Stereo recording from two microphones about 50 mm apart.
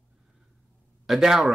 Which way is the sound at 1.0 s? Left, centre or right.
Centre.